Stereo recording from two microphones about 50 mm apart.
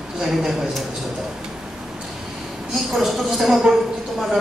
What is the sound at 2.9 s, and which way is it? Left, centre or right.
Speech, centre.